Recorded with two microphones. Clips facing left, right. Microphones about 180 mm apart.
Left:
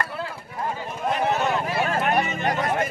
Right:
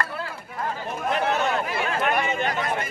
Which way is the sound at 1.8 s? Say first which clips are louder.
Even; 40° left (ahead or behind).